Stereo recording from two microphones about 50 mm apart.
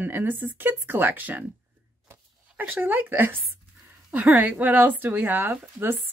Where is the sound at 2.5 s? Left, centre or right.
Right.